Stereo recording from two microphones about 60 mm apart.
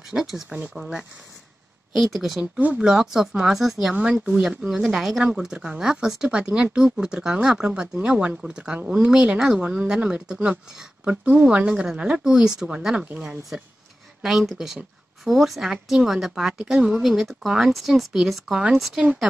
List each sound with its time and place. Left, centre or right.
0.1 s speech: centre
2.1 s speech: centre
3.9 s speech: centre
14.2 s speech: centre